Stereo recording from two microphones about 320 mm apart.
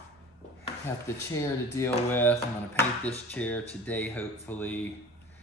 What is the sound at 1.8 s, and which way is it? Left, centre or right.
Speech, centre.